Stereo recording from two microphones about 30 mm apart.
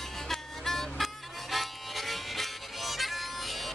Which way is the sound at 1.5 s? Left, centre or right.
Centre.